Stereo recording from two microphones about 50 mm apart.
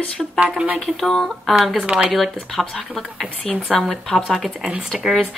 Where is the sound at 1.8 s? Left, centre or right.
Right.